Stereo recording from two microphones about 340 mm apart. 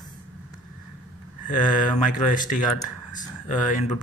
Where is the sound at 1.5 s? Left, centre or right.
Left.